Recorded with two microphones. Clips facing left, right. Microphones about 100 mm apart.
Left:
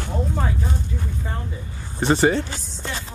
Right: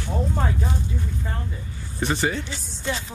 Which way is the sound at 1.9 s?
40° left (ahead or behind).